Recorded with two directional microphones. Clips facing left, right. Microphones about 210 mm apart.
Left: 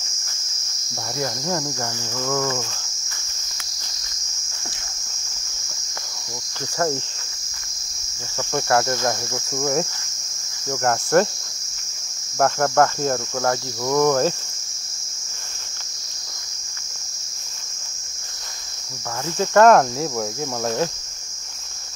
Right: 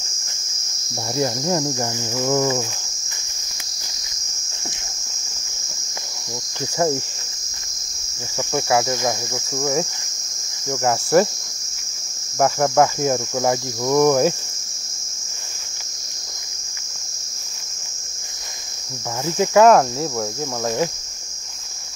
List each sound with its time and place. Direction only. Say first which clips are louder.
1.1 s cricket: right 5 dB; 20° right (ahead or behind)
8.4 s speech: right 1 dB; 10° right (ahead or behind)
9.5 s cricket: even; 5° right (ahead or behind)
10.7 s speech: right 1 dB; 5° right (ahead or behind)
12.4 s speech: right 1 dB; 5° right (ahead or behind)
19.2 s cricket: right 1 dB; 15° right (ahead or behind)